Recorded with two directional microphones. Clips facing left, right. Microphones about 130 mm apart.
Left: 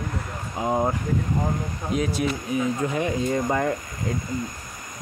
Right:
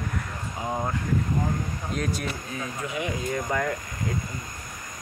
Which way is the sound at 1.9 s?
5° left (ahead or behind).